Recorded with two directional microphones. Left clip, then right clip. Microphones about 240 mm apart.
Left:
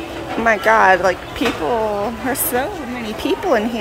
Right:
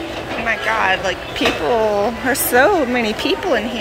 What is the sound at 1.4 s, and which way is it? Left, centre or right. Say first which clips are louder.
Speech: right 2 dB; centre.